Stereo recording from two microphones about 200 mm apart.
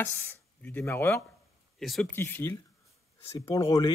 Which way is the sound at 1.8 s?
Centre (ahead or behind).